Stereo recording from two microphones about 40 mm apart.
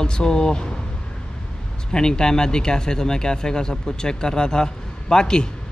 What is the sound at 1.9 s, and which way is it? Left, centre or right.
Speech, centre.